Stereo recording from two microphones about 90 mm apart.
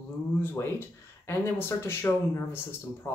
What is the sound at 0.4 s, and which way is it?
Speech, 25° left (ahead or behind).